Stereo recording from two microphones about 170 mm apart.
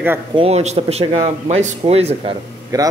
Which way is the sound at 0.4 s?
40° right (ahead or behind).